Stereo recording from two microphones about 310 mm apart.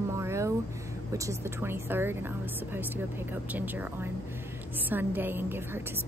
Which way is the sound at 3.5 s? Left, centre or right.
Centre.